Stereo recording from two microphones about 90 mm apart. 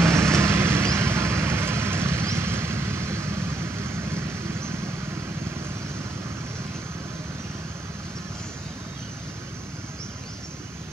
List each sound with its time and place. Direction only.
0.0 s vehicle: 30° right (ahead or behind)